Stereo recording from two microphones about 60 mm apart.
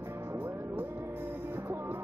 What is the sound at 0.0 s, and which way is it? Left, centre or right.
Music, right.